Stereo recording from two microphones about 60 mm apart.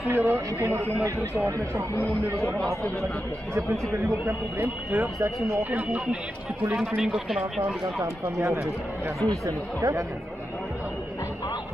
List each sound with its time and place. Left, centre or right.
0.1 s speech: right
0.7 s speech: right
4.9 s speech: right
6.8 s speech: centre
7.8 s speech: right